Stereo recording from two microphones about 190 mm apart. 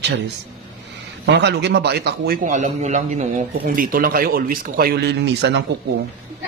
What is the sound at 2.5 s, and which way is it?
A man's voice, 40° right (ahead or behind).